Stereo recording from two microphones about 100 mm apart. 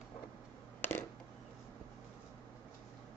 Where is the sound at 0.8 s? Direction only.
20° left (ahead or behind).